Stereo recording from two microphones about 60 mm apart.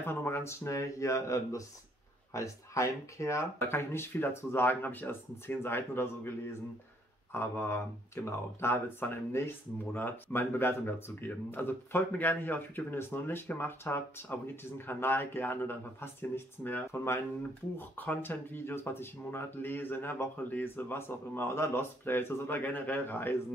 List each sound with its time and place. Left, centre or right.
0.0 s a sound: left
0.4 s speech: left
3.6 s speech: left
7.3 s speech: left
16.9 s speech: left
17.7 s speech: left
22.0 s speech: left
22.6 s speech: left